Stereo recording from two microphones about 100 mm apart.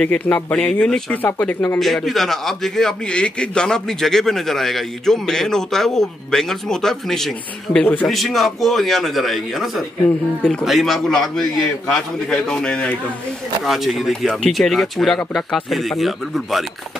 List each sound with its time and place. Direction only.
0.0 s speech: 10° left (ahead or behind)
1.8 s a man's voice: centre (ahead or behind)
7.8 s speech: 15° left (ahead or behind)
8.1 s a man's voice: centre (ahead or behind)
13.7 s a man's voice: centre (ahead or behind)